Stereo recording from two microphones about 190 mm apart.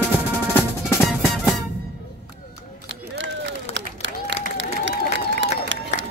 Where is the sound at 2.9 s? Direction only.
75° right (ahead or behind).